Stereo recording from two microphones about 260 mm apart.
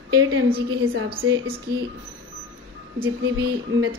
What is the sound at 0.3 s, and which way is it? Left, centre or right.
Speech, right.